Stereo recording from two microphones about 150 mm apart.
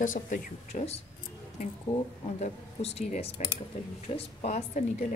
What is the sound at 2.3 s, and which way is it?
Speech, 45° left (ahead or behind).